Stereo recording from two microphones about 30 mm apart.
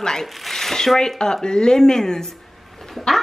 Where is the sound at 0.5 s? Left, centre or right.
Centre.